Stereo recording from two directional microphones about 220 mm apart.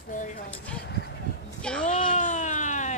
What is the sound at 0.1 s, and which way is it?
Speech, 35° left (ahead or behind).